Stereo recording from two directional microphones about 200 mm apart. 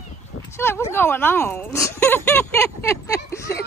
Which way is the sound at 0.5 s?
15° left (ahead or behind).